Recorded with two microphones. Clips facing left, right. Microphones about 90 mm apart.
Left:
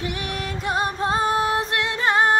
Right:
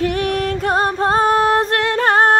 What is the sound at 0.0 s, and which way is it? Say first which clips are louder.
Music: right 10 dB; 50° right (ahead or behind).